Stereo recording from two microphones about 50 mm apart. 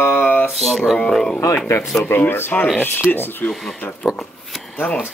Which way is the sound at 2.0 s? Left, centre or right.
Left.